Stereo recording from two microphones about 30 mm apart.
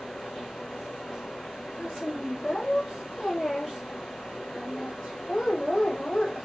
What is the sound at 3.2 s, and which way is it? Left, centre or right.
Speech, centre.